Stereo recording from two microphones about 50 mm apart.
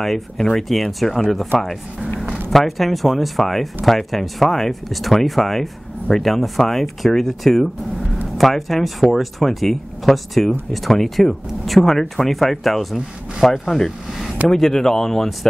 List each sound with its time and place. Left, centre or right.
0.0 s speech: centre